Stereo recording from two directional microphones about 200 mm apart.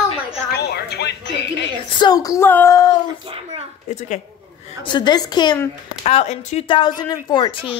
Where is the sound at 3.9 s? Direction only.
35° left (ahead or behind).